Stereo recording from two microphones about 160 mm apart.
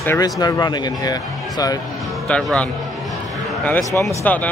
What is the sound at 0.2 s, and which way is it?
Speech, 25° left (ahead or behind).